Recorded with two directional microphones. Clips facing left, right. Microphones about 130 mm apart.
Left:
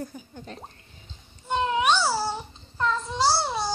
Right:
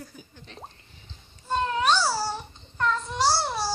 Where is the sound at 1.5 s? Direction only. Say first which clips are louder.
Left 1 dB; 15° left (ahead or behind).